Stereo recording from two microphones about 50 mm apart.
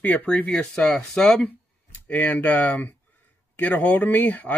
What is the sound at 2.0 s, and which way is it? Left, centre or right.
Speech, left.